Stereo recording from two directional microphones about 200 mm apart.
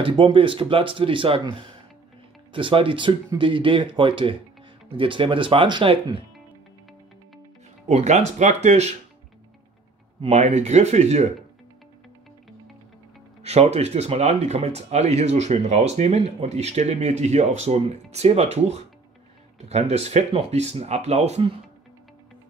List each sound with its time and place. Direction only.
0.0 s speech: 25° right (ahead or behind)
2.5 s speech: 25° right (ahead or behind)
7.9 s speech: 35° right (ahead or behind)
10.2 s speech: 35° right (ahead or behind)
13.4 s speech: 30° right (ahead or behind)